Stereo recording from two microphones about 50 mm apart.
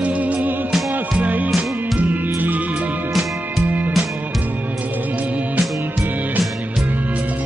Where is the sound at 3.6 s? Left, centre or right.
Right.